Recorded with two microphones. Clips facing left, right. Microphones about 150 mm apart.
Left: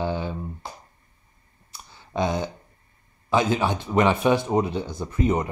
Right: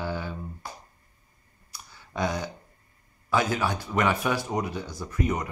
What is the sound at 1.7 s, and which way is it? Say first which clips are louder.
Clicking: left 6 dB; 25° left (ahead or behind).